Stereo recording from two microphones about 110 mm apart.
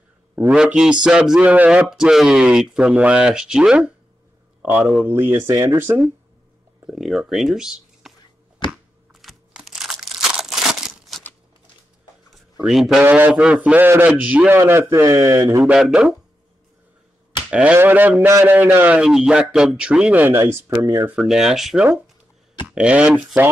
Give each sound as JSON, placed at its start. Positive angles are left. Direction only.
{"t": 0.5, "sound": "speech", "side_deg": -5}
{"t": 4.6, "sound": "a sound", "side_deg": -15}
{"t": 5.0, "sound": "speech", "side_deg": -20}
{"t": 7.0, "sound": "speech", "side_deg": -5}
{"t": 9.1, "sound": "crumpling", "side_deg": 0}
{"t": 12.6, "sound": "speech", "side_deg": -5}
{"t": 13.0, "sound": "speech", "side_deg": -20}
{"t": 13.3, "sound": "speech", "side_deg": -5}
{"t": 14.6, "sound": "speech", "side_deg": -25}
{"t": 15.6, "sound": "speech", "side_deg": -10}
{"t": 17.5, "sound": "speech", "side_deg": -10}
{"t": 18.9, "sound": "speech", "side_deg": -5}
{"t": 20.6, "sound": "speech", "side_deg": -30}
{"t": 21.1, "sound": "speech", "side_deg": -5}